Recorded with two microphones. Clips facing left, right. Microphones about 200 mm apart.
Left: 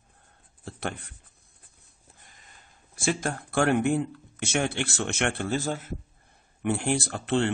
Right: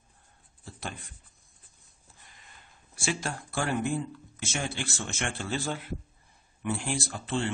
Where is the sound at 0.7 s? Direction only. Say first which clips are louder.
Left 6 dB; 65° left (ahead or behind).